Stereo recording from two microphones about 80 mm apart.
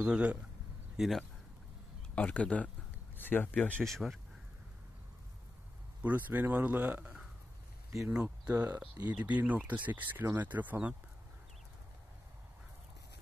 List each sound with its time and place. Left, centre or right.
0.0 s speech: centre
0.9 s speech: centre
2.1 s speech: centre
3.8 s speech: centre
6.0 s speech: right
8.6 s speech: right
9.1 s speech: centre